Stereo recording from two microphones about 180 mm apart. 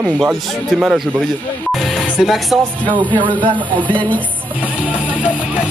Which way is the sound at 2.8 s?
25° right (ahead or behind).